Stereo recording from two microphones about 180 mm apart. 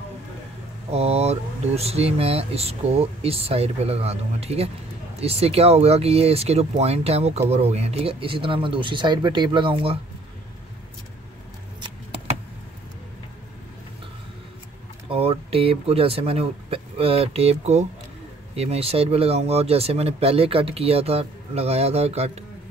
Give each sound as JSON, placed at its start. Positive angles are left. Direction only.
{"t": 0.8, "sound": "speech", "side_deg": -35}
{"t": 15.0, "sound": "speech", "side_deg": -30}